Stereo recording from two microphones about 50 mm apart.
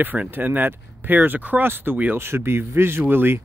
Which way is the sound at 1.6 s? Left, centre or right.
Right.